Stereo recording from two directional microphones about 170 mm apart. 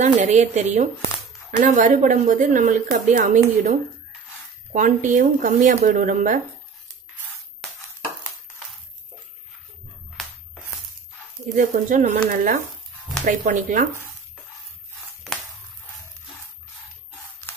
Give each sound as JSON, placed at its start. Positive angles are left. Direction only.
{"t": 0.0, "sound": "speech", "side_deg": -45}
{"t": 4.7, "sound": "speech", "side_deg": -50}
{"t": 11.5, "sound": "speech", "side_deg": -50}